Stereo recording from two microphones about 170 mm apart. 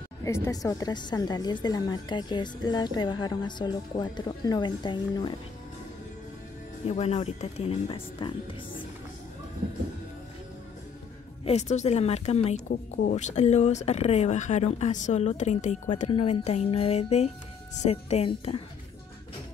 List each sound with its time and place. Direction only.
0.2 s a woman's voice: 20° left (ahead or behind)
6.9 s speech: 35° left (ahead or behind)
11.4 s speech: 40° left (ahead or behind)